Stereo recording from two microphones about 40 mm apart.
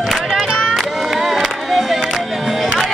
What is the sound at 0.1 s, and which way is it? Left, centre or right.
Crowd, centre.